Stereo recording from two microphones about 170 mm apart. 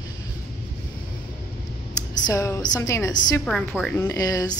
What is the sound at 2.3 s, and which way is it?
A woman's voice, 20° left (ahead or behind).